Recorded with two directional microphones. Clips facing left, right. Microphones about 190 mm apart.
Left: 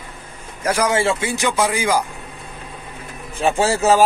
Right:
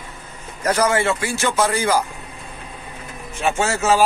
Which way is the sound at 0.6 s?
10° left (ahead or behind).